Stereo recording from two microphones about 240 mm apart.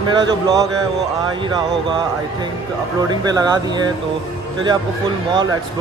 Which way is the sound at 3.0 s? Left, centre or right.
Centre.